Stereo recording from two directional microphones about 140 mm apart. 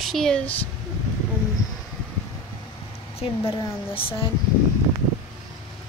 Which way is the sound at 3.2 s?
40° left (ahead or behind).